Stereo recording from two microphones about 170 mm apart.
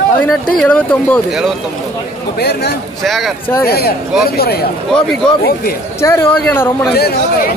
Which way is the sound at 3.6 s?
65° left (ahead or behind).